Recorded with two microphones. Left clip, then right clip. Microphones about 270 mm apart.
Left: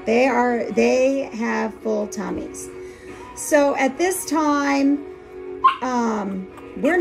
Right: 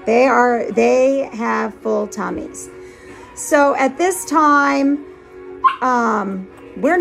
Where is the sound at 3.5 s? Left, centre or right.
Centre.